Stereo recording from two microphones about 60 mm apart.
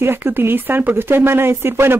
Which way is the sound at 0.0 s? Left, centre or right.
Right.